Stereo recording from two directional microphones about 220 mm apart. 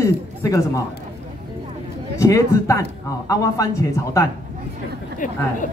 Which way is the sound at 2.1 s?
15° left (ahead or behind).